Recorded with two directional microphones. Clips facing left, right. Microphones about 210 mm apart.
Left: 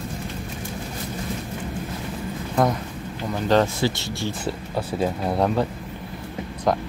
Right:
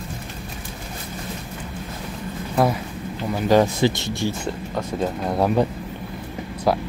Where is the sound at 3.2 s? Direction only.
10° right (ahead or behind).